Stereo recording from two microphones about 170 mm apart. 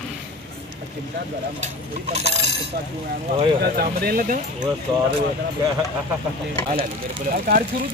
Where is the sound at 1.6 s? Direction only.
40° right (ahead or behind).